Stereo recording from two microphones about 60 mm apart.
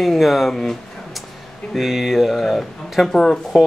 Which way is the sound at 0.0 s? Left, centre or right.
Centre.